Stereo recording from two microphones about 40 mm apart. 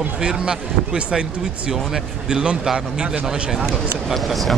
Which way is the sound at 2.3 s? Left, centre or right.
Right.